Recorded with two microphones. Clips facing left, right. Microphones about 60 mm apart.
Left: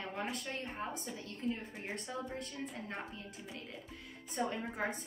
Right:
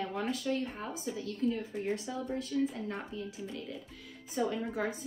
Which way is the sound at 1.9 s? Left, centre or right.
Left.